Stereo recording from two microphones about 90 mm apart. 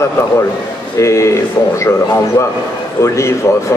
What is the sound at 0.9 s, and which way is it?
Speech, 35° left (ahead or behind).